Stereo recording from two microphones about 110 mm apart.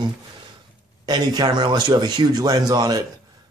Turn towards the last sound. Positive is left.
turn(degrees=-35)  # may be behind; listen again after turning